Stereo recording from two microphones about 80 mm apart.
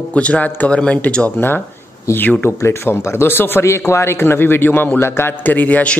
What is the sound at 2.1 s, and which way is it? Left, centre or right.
A man's voice, left.